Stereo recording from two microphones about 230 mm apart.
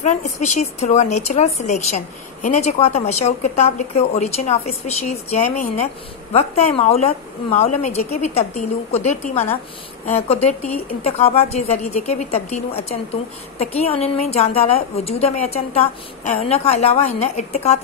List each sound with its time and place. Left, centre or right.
0.0 s a woman's voice: left